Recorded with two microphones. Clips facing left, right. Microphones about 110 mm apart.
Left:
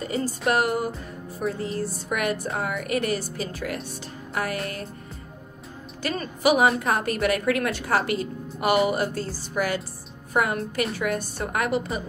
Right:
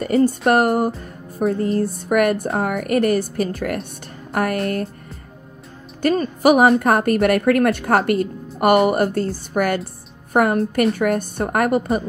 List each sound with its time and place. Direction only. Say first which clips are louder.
0.0 s speech: right 11 dB; 60° right (ahead or behind)
0.5 s a woman's voice: right 3 dB; 45° right (ahead or behind)
4.3 s music: right 7 dB; 55° right (ahead or behind)
6.0 s a woman's voice: right 7 dB; 50° right (ahead or behind)